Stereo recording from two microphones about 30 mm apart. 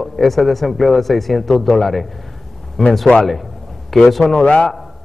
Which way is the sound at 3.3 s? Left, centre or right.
Centre.